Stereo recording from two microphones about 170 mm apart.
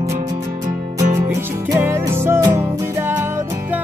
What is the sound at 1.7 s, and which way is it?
Music, 15° right (ahead or behind).